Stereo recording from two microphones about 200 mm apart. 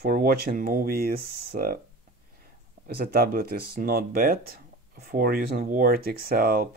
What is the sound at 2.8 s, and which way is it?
Speech, 50° right (ahead or behind).